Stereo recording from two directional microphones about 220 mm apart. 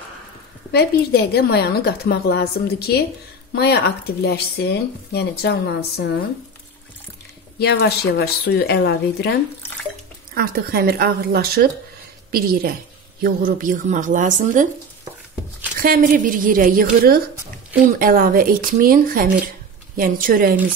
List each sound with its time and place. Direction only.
0.7 s speech: 45° left (ahead or behind)
7.5 s speech: 50° left (ahead or behind)
10.3 s a woman's voice: 45° right (ahead or behind)
15.8 s speech: 40° right (ahead or behind)